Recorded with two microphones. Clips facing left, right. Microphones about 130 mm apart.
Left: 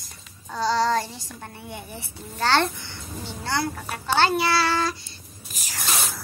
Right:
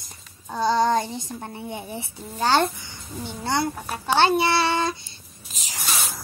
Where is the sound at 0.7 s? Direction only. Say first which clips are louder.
Right 2 dB; 20° right (ahead or behind).